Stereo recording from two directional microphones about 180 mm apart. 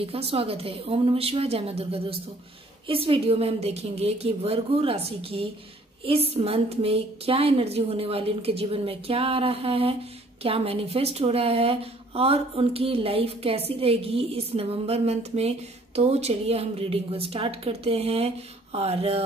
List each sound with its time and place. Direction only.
0.0 s speech: 30° right (ahead or behind)